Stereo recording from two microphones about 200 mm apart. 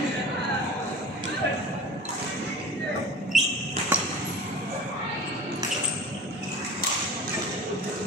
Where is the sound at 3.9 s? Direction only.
5° right (ahead or behind).